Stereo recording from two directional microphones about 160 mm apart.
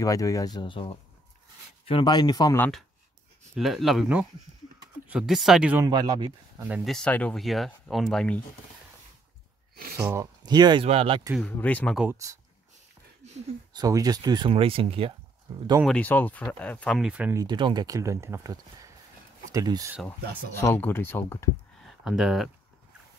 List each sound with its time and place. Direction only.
0.0 s speech: 20° left (ahead or behind)
3.5 s speech: centre (ahead or behind)
5.9 s speech: 25° right (ahead or behind)
6.8 s speech: 5° left (ahead or behind)
9.9 s speech: 20° right (ahead or behind); by 11.2 s 35° right (ahead or behind)
11.3 s speech: 10° left (ahead or behind)
13.7 s speech: 25° right (ahead or behind)
15.8 s speech: 10° left (ahead or behind)
17.4 s speech: 30° right (ahead or behind)
20.6 s speech: 15° left (ahead or behind)
21.8 s speech: centre (ahead or behind)